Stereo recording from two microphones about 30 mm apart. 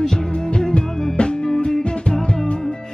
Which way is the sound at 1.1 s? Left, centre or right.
Left.